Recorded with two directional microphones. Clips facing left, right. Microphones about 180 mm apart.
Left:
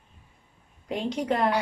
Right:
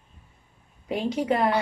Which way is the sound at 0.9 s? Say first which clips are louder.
Right 2 dB; 5° right (ahead or behind).